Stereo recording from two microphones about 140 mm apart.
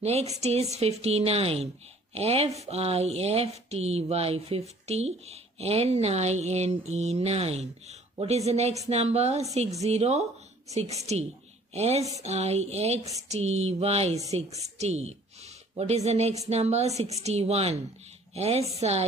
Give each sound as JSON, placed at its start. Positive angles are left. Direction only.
{"t": 0.0, "sound": "a woman's voice", "side_deg": -50}